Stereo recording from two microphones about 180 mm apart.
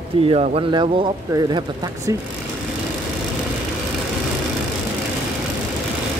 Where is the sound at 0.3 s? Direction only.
30° right (ahead or behind).